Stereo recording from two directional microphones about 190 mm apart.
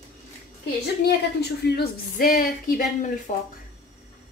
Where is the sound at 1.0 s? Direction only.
60° left (ahead or behind).